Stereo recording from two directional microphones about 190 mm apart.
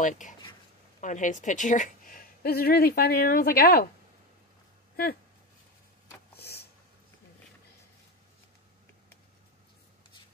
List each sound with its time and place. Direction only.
0.0 s a woman's voice: 40° left (ahead or behind)
2.4 s a woman's voice: 55° left (ahead or behind)
6.3 s a sound: 55° left (ahead or behind)